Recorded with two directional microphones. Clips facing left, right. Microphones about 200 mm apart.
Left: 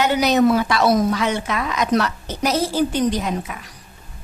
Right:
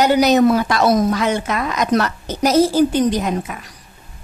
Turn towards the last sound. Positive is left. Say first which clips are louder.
# right 3 dB
turn(degrees=-45)  # may be behind; listen again after turning